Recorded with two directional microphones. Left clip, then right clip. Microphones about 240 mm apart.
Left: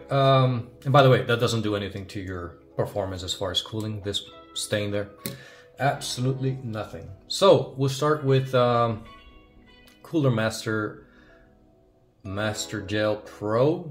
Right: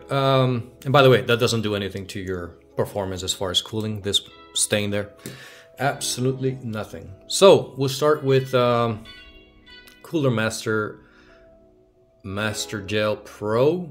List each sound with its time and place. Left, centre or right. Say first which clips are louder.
0.0 s speech: right 1 dB; right
10.0 s speech: right 2 dB; right
12.3 s speech: right 2 dB; right